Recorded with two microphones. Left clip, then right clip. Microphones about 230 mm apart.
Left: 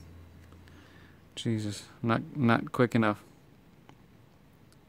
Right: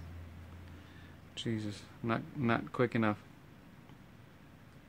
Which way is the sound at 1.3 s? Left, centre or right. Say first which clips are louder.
Left 5 dB; left.